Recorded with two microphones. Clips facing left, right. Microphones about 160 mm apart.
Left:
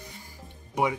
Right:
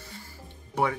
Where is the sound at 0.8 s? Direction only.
15° left (ahead or behind).